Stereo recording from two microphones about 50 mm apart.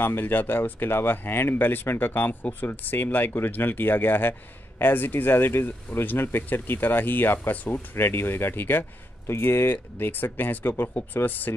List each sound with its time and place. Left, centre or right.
0.0 s speech: left
7.9 s speech: left
11.2 s speech: left